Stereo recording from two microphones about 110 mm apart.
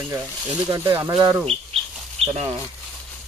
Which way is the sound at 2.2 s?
70° right (ahead or behind).